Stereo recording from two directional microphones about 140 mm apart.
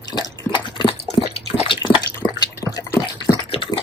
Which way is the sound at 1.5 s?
35° left (ahead or behind).